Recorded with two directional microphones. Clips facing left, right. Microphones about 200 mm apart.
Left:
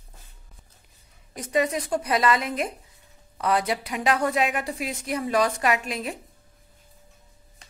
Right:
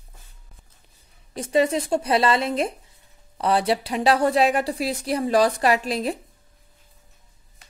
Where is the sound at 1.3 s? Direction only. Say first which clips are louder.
Right 4 dB; 30° right (ahead or behind).